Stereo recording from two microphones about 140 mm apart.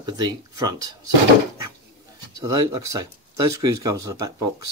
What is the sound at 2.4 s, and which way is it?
Speech, 25° right (ahead or behind).